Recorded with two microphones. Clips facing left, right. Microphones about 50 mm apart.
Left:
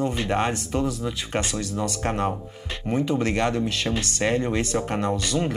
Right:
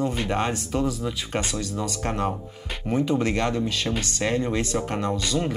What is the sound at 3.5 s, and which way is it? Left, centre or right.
Speech, centre.